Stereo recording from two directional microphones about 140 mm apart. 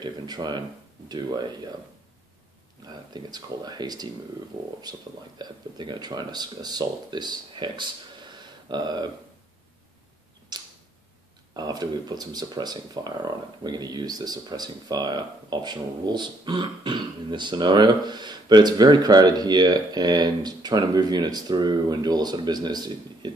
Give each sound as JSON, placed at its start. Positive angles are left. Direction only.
{"t": 0.0, "sound": "speech", "side_deg": -30}
{"t": 2.9, "sound": "speech", "side_deg": -30}
{"t": 10.5, "sound": "tick-tock", "side_deg": -30}
{"t": 11.5, "sound": "speech", "side_deg": -30}